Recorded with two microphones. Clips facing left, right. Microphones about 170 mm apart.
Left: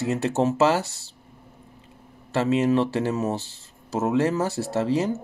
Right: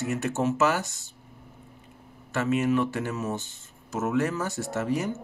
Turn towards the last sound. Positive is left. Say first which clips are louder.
# left 5 dB
turn(degrees=30)  # may be behind; listen again after turning